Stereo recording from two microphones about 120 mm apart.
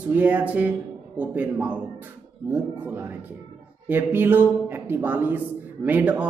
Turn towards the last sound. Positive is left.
turn(degrees=-15)  # may be behind; listen again after turning